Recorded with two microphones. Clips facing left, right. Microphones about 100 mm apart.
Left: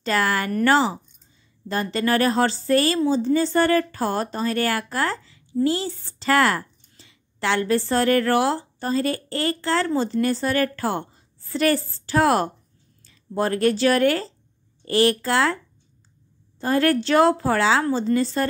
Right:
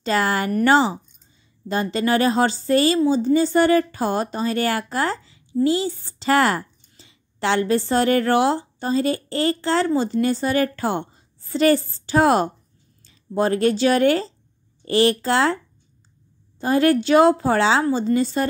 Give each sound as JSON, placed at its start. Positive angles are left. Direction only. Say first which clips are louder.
{"t": 0.0, "sound": "a woman's voice", "louder": "right 2 dB", "side_deg": -25}